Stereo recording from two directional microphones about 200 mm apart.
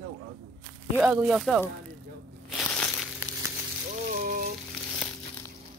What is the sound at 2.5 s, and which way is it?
Crushing, 5° left (ahead or behind).